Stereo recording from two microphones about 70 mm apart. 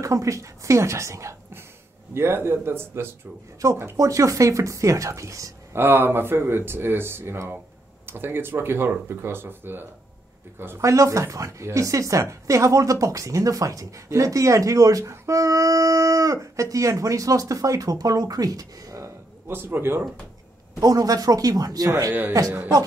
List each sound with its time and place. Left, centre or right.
0.0 s a woman's voice: right
3.9 s a woman's voice: right
5.8 s speech: right
10.8 s a woman's voice: right
19.4 s speech: right
20.8 s speech: right